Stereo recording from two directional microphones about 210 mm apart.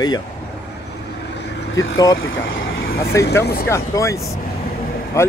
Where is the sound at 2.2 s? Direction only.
65° left (ahead or behind).